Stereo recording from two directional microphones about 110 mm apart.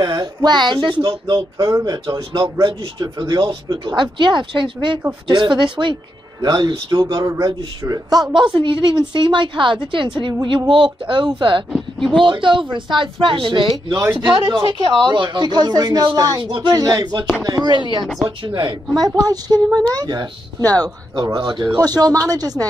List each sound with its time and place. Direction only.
0.0 s speech: 40° right (ahead or behind)
11.7 s speech: 5° left (ahead or behind)
12.3 s speech: 45° right (ahead or behind)
18.0 s speech: centre (ahead or behind)
18.5 s speech: 45° right (ahead or behind)